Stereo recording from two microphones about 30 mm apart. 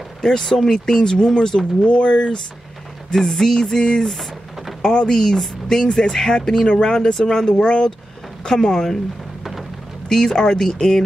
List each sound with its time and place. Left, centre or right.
0.2 s speech: left
1.8 s speech: left
3.1 s speech: centre
3.6 s speech: left
9.4 s rain: centre
10.0 s speech: left